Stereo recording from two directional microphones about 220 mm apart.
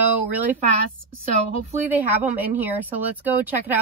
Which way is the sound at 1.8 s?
5° right (ahead or behind).